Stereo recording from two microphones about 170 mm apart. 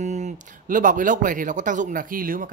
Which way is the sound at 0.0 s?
45° right (ahead or behind).